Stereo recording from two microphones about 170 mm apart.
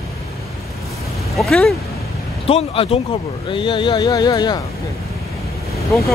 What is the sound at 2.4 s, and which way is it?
Speech, 35° left (ahead or behind).